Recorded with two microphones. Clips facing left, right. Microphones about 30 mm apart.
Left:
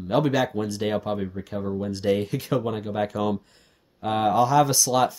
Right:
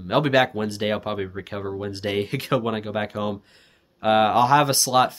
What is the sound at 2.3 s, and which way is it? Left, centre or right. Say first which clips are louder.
Speech: right 2 dB; right.